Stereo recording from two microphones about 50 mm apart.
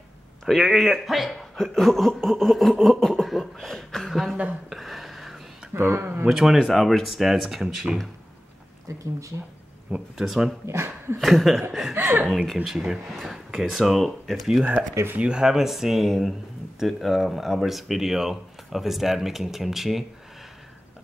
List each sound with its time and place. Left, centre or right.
0.5 s speech: centre
4.6 s a sound: centre
5.8 s speech: right
6.2 s speech: centre
10.1 s speech: centre
10.7 s speech: right
11.1 s speech: centre
11.9 s speech: right
12.6 s speech: centre
13.1 s speech: centre
15.1 s speech: centre